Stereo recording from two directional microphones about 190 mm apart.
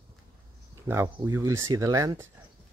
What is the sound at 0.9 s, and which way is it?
Speech, 15° right (ahead or behind).